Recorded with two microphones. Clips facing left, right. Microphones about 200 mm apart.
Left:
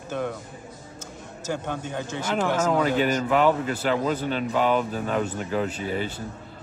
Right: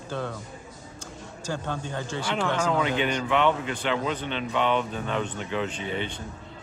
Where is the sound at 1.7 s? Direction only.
15° left (ahead or behind).